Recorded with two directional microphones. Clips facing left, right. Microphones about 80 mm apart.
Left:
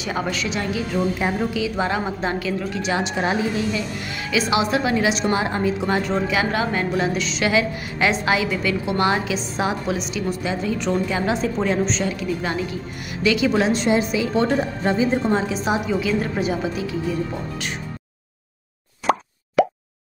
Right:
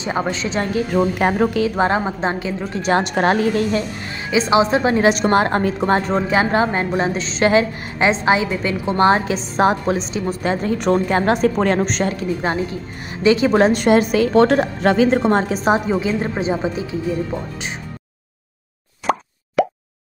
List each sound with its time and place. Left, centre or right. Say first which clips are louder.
0.0 s speech: right 3 dB; right
0.8 s a woman's voice: right 5 dB; right
4.1 s a woman's voice: right 5 dB; right
8.1 s a woman's voice: right 5 dB; right
10.4 s a woman's voice: right 7 dB; right
12.4 s a woman's voice: right 4 dB; right
19.1 s plop: even; centre